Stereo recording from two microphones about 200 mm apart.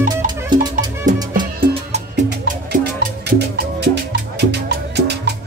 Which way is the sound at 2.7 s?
50° right (ahead or behind).